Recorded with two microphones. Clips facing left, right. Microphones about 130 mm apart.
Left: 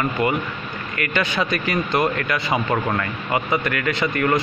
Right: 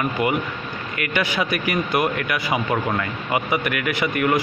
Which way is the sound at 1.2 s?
20° left (ahead or behind).